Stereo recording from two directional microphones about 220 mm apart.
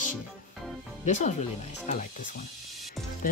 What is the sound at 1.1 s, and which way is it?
Speech, 35° left (ahead or behind).